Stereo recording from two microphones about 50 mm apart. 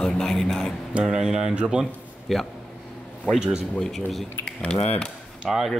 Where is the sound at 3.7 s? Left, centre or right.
Centre.